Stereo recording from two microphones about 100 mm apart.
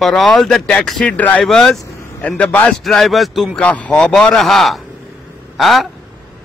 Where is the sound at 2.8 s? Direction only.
Centre (ahead or behind).